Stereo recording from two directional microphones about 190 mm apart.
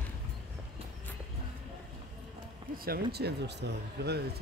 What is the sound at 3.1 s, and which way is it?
Speech, 60° right (ahead or behind).